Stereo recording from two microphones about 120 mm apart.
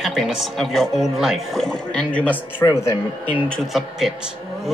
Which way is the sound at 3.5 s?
Centre (ahead or behind).